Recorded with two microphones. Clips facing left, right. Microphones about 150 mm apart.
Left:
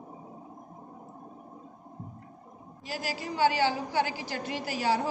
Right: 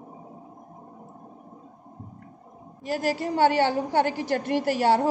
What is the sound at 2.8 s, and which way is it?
A woman's voice, 55° right (ahead or behind).